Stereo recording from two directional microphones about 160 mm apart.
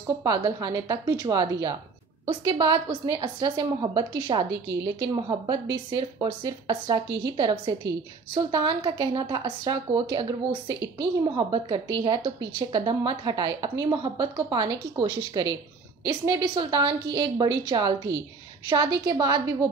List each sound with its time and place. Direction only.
0.2 s a woman's voice: 25° right (ahead or behind)